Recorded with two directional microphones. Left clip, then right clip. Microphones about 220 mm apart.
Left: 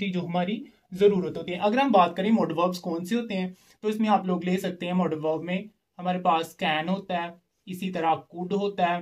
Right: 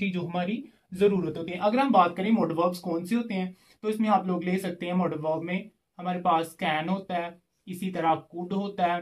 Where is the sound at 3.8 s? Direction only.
40° left (ahead or behind).